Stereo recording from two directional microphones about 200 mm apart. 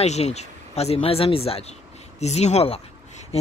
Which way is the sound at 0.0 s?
35° left (ahead or behind).